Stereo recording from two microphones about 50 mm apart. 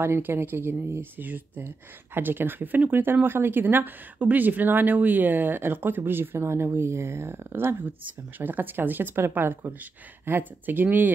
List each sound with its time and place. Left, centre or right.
0.0 s speech: right
7.5 s speech: right